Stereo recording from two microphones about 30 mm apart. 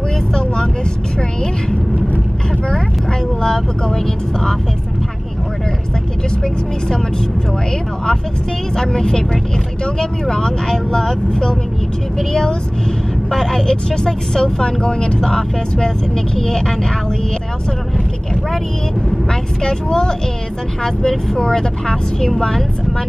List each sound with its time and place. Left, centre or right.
0.3 s speech: left
3.1 s speech: left
8.7 s speech: left
15.1 s speech: centre
19.6 s speech: left
21.4 s speech: left